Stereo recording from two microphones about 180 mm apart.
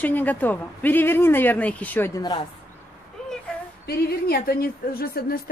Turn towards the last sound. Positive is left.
turn(degrees=55)  # may be behind; listen again after turning